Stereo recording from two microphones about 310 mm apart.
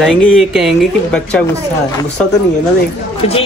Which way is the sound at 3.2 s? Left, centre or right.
Centre.